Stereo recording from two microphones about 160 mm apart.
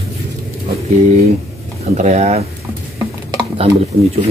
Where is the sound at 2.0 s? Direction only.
45° right (ahead or behind).